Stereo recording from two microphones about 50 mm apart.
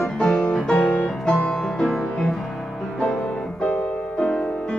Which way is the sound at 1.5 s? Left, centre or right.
Centre.